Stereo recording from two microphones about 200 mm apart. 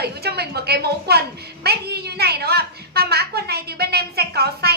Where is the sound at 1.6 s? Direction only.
55° right (ahead or behind).